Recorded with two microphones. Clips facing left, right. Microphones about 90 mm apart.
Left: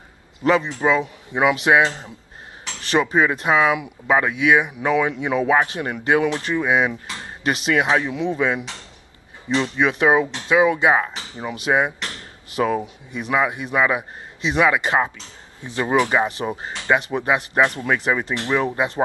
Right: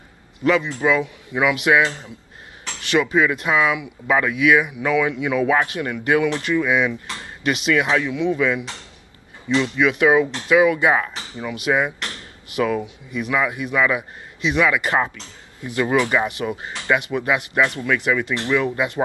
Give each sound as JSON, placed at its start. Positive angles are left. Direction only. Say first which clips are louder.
{"t": 0.4, "sound": "speech", "louder": "even", "side_deg": 30}
{"t": 4.1, "sound": "speech", "louder": "even", "side_deg": 25}
{"t": 7.8, "sound": "speech", "louder": "left 1 dB", "side_deg": 20}
{"t": 8.1, "sound": "speech", "louder": "right 1 dB", "side_deg": 35}
{"t": 9.6, "sound": "speech", "louder": "right 1 dB", "side_deg": 30}